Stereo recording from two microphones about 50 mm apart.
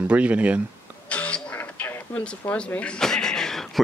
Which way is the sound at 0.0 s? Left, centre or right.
Right.